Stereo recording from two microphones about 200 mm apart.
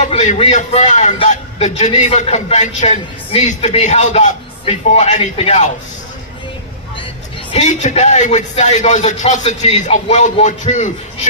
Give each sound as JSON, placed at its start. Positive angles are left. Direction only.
{"t": 0.0, "sound": "a man's voice", "side_deg": 35}
{"t": 7.5, "sound": "a man's voice", "side_deg": 35}